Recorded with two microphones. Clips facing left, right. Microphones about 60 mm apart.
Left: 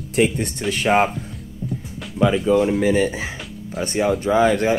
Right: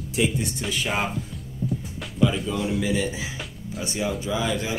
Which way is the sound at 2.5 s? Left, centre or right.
Left.